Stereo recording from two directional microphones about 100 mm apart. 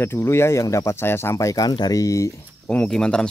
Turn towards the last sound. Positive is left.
turn(degrees=10)  # may be behind; listen again after turning